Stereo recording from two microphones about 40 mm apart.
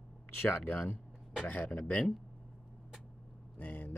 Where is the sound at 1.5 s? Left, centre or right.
Left.